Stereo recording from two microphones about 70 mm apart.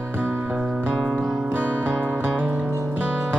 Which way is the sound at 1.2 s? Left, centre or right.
Centre.